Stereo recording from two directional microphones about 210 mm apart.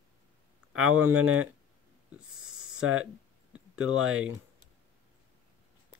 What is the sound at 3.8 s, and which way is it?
Speech, 80° right.